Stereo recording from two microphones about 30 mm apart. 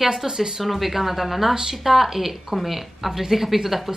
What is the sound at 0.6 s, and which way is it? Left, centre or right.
A woman's voice, centre.